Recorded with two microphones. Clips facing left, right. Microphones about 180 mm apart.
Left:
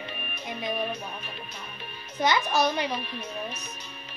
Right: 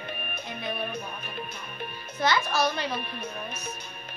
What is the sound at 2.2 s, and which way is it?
Speech, 15° left (ahead or behind).